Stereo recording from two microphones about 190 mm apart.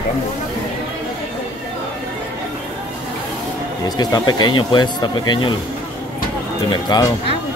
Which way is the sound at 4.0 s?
20° left (ahead or behind).